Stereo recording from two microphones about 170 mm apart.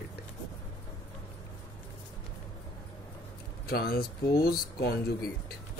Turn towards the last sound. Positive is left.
turn(degrees=60)  # may be behind; listen again after turning